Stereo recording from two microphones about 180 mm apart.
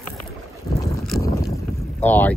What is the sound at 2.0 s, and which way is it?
Boat, 10° left (ahead or behind).